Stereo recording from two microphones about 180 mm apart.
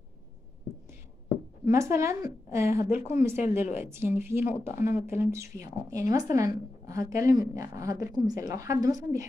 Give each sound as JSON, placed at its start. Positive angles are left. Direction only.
{"t": 1.6, "sound": "a woman's voice", "side_deg": -15}
{"t": 4.7, "sound": "speech", "side_deg": 40}
{"t": 5.0, "sound": "a woman's voice", "side_deg": -15}